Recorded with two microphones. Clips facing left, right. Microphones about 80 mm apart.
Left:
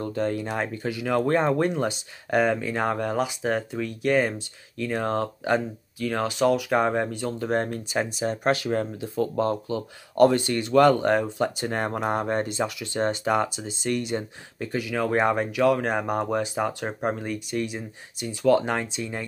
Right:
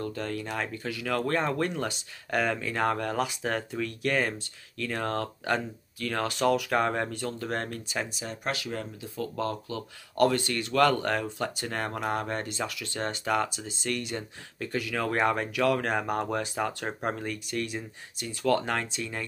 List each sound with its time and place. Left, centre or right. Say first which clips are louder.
0.0 s speech: left 6 dB; left
8.2 s speech: left 9 dB; left; by 19.2 s centre